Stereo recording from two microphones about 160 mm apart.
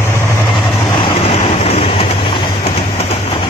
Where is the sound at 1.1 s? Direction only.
35° left (ahead or behind).